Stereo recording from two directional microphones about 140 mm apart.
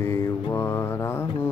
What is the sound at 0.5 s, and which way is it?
Mantra, 15° left (ahead or behind).